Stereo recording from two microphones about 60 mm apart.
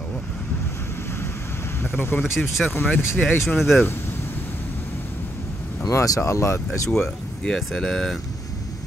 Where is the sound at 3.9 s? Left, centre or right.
Left.